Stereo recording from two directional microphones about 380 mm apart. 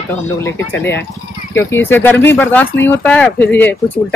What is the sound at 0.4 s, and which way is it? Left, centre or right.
Speech, centre.